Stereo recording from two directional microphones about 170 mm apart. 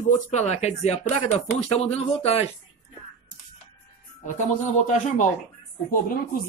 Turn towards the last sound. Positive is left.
turn(degrees=55)  # may be behind; listen again after turning